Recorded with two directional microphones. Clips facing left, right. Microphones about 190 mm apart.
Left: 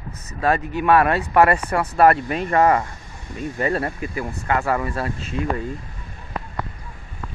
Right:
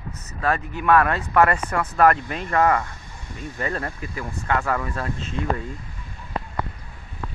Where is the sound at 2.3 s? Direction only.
20° left (ahead or behind).